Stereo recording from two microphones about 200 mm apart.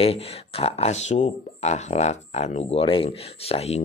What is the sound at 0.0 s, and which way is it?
Speech, 30° left (ahead or behind).